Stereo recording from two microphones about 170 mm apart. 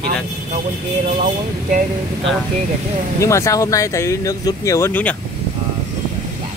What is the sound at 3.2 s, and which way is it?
Speech, 20° left (ahead or behind).